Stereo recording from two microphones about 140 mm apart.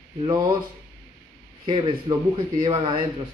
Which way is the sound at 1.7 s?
35° right (ahead or behind).